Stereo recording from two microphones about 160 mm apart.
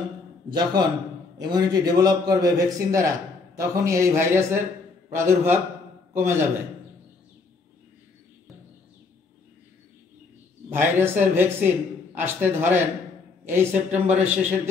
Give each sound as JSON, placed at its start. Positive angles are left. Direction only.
{"t": 0.5, "sound": "a man's voice", "side_deg": -25}
{"t": 10.7, "sound": "a man's voice", "side_deg": -10}